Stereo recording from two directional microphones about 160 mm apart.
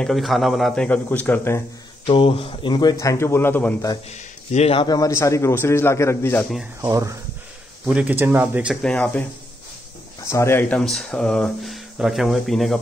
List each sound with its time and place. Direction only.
0.0 s speech: centre (ahead or behind)
2.0 s speech: 35° left (ahead or behind); by 3.9 s 15° left (ahead or behind)
4.5 s speech: 40° left (ahead or behind)
4.8 s a man's voice: 20° left (ahead or behind)
6.8 s speech: 20° right (ahead or behind)
7.8 s speech: 10° right (ahead or behind)
8.8 s a man's voice: 10° left (ahead or behind)
10.2 s speech: 15° left (ahead or behind); by 12.7 s centre (ahead or behind)